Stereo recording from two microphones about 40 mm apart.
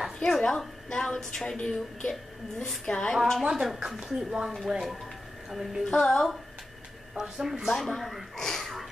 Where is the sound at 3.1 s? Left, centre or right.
Centre.